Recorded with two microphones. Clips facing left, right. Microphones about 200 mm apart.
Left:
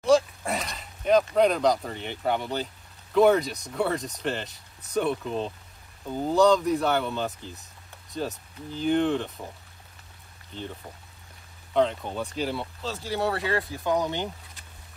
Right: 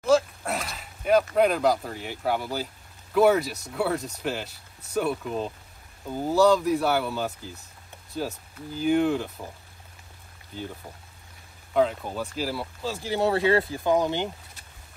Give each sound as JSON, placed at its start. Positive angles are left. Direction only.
{"t": 0.0, "sound": "speech", "side_deg": 0}
{"t": 10.5, "sound": "speech", "side_deg": -10}
{"t": 11.7, "sound": "speech", "side_deg": -5}
{"t": 12.9, "sound": "speech", "side_deg": -20}